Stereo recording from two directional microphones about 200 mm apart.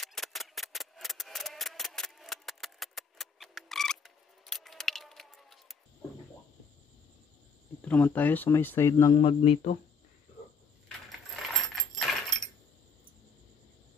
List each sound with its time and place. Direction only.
0.0 s a sound: centre (ahead or behind)
7.8 s speech: 10° left (ahead or behind)
9.2 s speech: 30° left (ahead or behind)
11.1 s keys jangling: centre (ahead or behind)